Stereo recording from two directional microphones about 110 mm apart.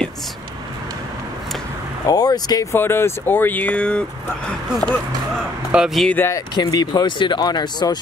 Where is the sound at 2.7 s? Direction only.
20° left (ahead or behind).